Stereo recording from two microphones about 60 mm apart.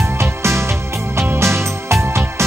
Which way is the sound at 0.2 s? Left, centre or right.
Right.